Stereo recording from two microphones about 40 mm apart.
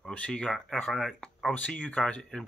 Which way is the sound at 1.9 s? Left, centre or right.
Left.